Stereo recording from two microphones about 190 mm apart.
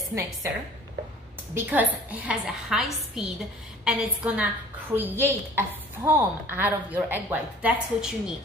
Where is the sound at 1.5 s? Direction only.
10° right (ahead or behind).